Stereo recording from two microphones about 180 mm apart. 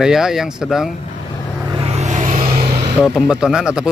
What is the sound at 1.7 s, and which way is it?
Vehicle, 35° right (ahead or behind).